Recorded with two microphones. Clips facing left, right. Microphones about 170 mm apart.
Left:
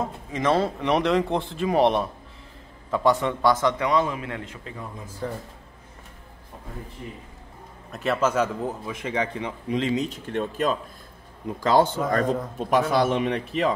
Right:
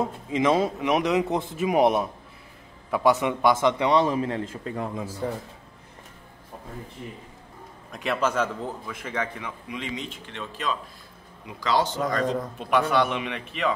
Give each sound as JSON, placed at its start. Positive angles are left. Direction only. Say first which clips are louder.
{"t": 0.3, "sound": "a man's voice", "louder": "right 1 dB", "side_deg": -10}
{"t": 5.2, "sound": "a man's voice", "louder": "right 1 dB", "side_deg": -10}
{"t": 7.9, "sound": "a man's voice", "louder": "left 2 dB", "side_deg": 5}
{"t": 8.6, "sound": "speech", "louder": "left 4 dB", "side_deg": 20}
{"t": 9.7, "sound": "speech", "louder": "left 10 dB", "side_deg": 40}
{"t": 12.5, "sound": "speech", "louder": "left 1 dB", "side_deg": 40}